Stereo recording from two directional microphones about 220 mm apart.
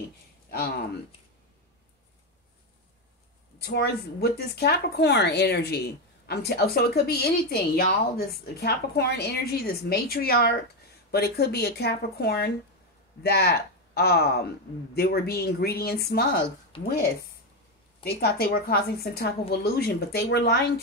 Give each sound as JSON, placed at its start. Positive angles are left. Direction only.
{"t": 0.5, "sound": "speech", "side_deg": 45}
{"t": 3.5, "sound": "speech", "side_deg": 45}
{"t": 16.7, "sound": "speech", "side_deg": 25}
{"t": 18.0, "sound": "speech", "side_deg": 45}